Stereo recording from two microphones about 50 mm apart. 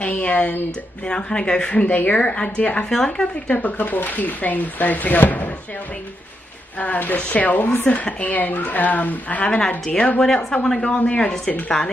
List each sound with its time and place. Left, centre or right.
0.0 s speech: left
1.0 s speech: centre; by 5.5 s left
6.8 s speech: left
10.2 s speech: centre